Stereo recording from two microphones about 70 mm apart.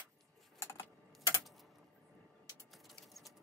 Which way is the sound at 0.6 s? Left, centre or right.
Left.